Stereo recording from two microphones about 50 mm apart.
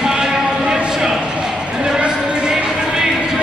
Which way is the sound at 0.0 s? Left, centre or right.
Centre.